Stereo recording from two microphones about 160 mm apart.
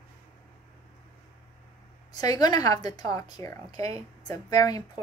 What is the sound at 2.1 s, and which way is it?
A woman's voice, 25° left (ahead or behind).